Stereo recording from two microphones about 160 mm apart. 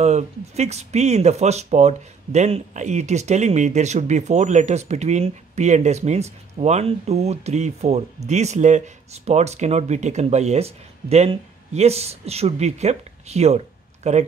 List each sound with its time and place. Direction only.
0.0 s speech: 45° right (ahead or behind)